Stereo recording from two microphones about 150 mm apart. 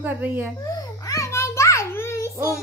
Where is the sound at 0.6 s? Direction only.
25° left (ahead or behind).